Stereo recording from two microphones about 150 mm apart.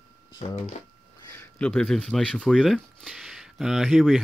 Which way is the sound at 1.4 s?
10° left (ahead or behind).